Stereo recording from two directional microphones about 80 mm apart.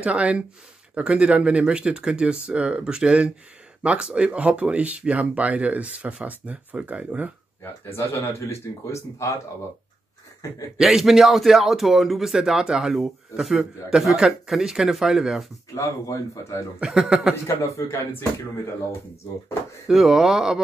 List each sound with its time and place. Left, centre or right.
0.0 s speech: centre
7.6 s speech: left
10.8 s speech: centre
15.7 s speech: left
16.8 s speech: centre
19.9 s speech: centre